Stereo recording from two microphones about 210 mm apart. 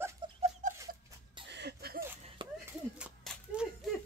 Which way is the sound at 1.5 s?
50° right (ahead or behind).